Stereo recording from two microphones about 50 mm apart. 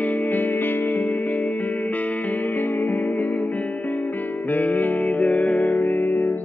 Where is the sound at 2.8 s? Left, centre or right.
Left.